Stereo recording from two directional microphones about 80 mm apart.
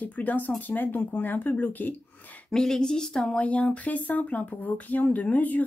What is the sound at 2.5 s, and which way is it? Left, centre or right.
Speech, centre.